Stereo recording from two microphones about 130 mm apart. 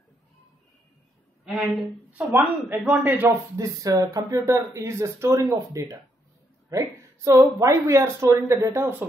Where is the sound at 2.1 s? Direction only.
10° right (ahead or behind).